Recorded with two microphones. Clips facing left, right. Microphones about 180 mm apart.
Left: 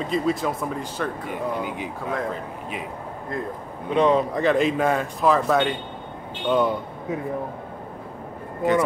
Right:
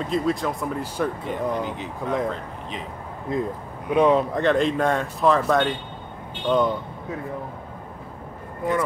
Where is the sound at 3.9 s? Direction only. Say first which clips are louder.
Right 1 dB; 5° right (ahead or behind).